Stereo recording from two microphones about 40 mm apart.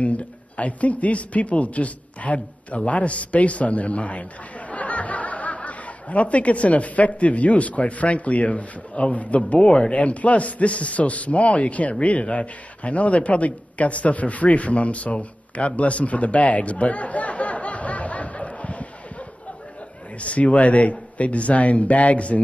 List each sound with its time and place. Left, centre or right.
0.0 s speech: left
9.5 s a man's voice: left